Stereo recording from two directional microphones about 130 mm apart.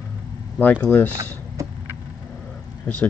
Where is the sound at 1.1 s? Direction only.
20° right (ahead or behind).